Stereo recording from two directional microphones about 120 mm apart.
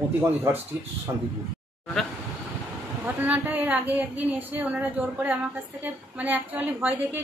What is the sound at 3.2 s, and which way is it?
A woman's voice, 15° right (ahead or behind).